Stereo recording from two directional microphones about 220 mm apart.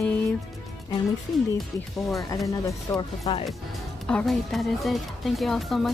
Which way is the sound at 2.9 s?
20° left (ahead or behind).